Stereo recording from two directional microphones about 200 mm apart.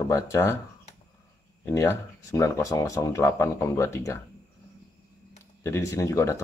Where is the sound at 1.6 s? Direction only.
15° left (ahead or behind).